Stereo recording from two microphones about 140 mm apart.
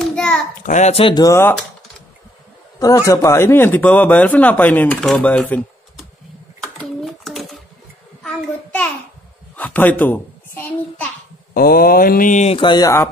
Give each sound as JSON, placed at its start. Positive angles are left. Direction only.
{"t": 0.0, "sound": "child singing", "side_deg": 5}
{"t": 0.7, "sound": "speech", "side_deg": 55}
{"t": 1.0, "sound": "speech", "side_deg": 30}
{"t": 3.1, "sound": "a man's voice", "side_deg": 20}
{"t": 6.8, "sound": "a sound", "side_deg": 0}
{"t": 8.2, "sound": "child singing", "side_deg": 10}
{"t": 9.6, "sound": "a child's voice", "side_deg": 10}
{"t": 11.5, "sound": "speech", "side_deg": 90}
{"t": 12.5, "sound": "speech", "side_deg": 30}